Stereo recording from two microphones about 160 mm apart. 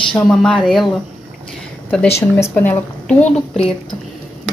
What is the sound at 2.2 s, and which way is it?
Speech, 10° left (ahead or behind).